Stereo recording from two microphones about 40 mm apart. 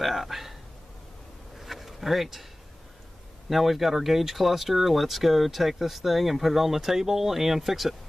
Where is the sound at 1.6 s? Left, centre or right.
Centre.